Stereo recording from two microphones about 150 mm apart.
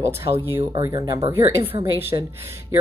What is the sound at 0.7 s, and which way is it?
Speech, 25° right (ahead or behind).